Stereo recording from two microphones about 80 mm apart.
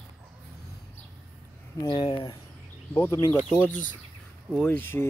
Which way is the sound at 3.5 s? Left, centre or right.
Centre.